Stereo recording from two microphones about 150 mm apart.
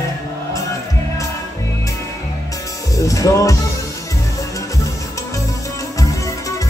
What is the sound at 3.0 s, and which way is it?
Music, 20° left (ahead or behind).